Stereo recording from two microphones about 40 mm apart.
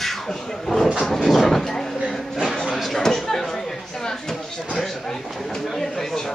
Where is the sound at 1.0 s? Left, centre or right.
Centre.